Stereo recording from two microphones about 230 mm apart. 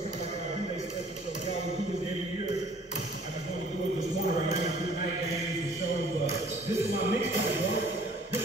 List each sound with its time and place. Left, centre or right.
7.1 s music: right